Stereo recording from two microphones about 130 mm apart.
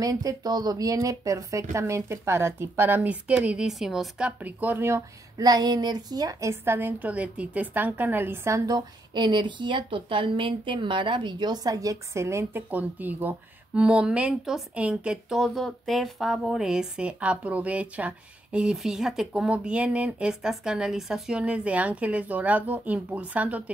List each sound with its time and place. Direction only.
0.0 s a woman's voice: 30° right (ahead or behind)
5.4 s a woman's voice: 30° right (ahead or behind); by 23.6 s 10° right (ahead or behind)